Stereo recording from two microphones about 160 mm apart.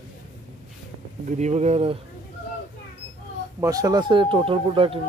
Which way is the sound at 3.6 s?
20° right (ahead or behind).